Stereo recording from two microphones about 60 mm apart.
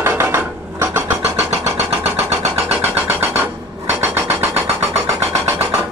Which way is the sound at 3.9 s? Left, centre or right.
Right.